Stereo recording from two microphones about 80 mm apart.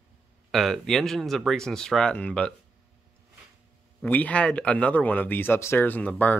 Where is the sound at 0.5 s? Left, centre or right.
Centre.